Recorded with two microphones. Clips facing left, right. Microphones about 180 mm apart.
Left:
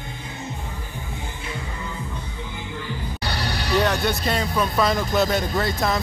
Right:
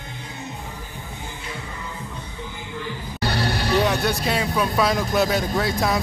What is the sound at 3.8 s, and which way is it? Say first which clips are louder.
Speech: left 1 dB; 5° right (ahead or behind).